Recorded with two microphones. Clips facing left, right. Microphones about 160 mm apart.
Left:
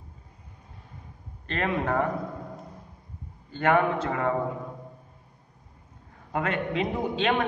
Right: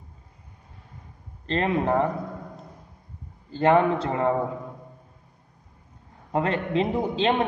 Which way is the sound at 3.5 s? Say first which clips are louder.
Right 3 dB; 30° right (ahead or behind).